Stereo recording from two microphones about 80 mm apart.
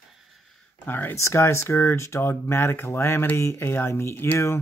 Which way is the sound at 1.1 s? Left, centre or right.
Left.